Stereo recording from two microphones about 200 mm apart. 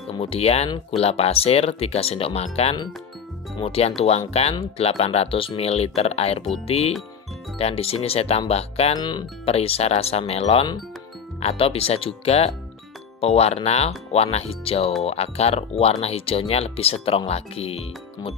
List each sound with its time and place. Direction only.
0.2 s speech: 30° left (ahead or behind)
7.5 s speech: 30° left (ahead or behind)
8.9 s speech: 20° left (ahead or behind)